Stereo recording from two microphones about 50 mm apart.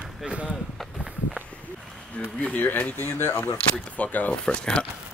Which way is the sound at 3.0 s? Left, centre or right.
Left.